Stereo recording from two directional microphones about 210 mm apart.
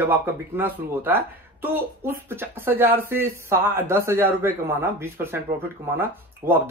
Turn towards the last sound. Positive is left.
turn(degrees=-10)  # may be behind; listen again after turning